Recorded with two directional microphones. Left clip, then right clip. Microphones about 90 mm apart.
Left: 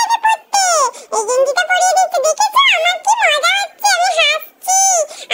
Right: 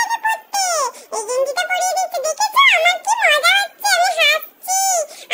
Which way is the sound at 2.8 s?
35° left (ahead or behind).